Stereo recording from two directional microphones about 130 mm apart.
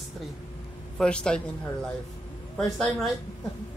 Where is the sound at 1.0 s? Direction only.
5° left (ahead or behind).